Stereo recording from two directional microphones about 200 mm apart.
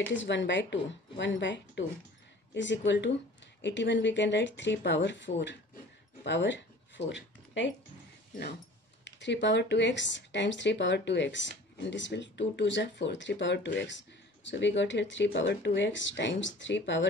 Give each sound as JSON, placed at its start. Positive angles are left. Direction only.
{"t": 0.1, "sound": "speech", "side_deg": 65}
{"t": 6.2, "sound": "a sound", "side_deg": 65}
{"t": 9.0, "sound": "speech", "side_deg": 60}